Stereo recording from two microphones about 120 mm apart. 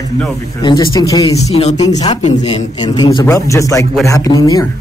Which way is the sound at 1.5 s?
60° left (ahead or behind).